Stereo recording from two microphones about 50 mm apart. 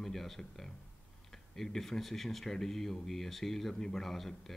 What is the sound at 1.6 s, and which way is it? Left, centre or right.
Speech, centre.